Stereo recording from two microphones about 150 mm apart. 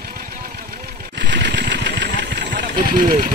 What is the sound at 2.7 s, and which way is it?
Speech, 65° right (ahead or behind).